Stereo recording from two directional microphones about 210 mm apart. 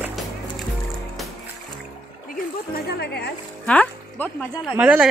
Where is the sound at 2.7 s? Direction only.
50° left (ahead or behind).